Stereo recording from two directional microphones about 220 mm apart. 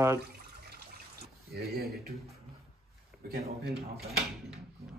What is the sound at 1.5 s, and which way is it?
Speech, 45° right (ahead or behind).